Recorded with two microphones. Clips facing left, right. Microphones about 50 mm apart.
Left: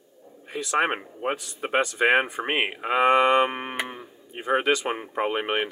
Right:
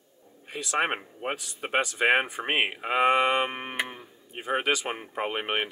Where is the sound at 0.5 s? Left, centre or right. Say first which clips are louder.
Left 3 dB; centre.